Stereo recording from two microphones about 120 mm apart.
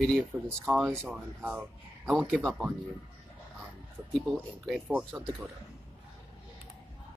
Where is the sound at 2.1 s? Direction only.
10° right (ahead or behind).